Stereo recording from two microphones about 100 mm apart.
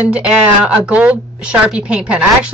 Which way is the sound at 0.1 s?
10° right (ahead or behind).